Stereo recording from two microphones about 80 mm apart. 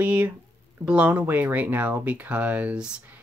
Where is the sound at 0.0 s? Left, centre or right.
Right.